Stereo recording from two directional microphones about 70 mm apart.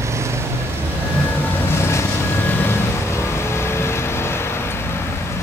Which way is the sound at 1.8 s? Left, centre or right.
Left.